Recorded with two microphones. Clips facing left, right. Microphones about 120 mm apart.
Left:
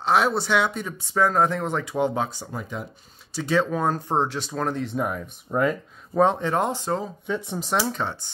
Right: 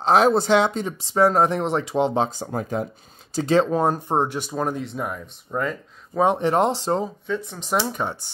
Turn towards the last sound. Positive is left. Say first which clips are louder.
# right 1 dB
turn(degrees=0)  # may be behind; listen again after turning